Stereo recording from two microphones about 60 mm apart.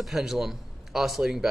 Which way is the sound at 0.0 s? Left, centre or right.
Centre.